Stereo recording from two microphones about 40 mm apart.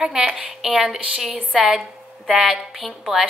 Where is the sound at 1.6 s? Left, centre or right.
Centre.